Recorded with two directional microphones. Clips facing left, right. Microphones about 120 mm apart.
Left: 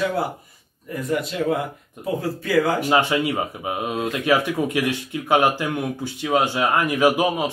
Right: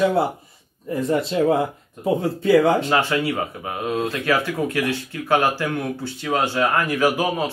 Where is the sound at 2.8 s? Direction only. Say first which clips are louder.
Left 1 dB; 15° left (ahead or behind).